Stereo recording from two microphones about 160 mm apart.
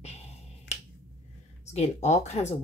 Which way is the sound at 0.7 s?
45° left (ahead or behind).